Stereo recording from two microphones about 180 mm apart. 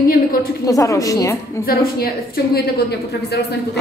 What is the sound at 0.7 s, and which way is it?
Speech, 20° left (ahead or behind).